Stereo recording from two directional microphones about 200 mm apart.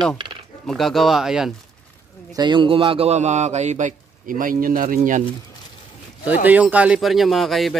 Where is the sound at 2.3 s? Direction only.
25° right (ahead or behind); by 5.2 s 40° right (ahead or behind).